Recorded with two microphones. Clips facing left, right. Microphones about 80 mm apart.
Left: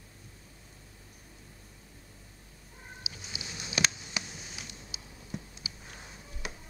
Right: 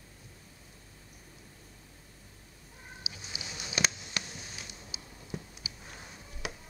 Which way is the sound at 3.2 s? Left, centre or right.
Centre.